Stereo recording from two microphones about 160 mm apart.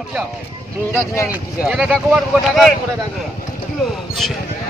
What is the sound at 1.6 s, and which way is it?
Speech, centre (ahead or behind).